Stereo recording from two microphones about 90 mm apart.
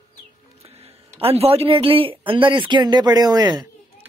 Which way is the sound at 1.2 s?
90° right.